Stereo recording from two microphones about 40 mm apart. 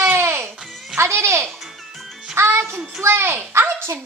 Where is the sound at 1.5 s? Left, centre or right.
Centre.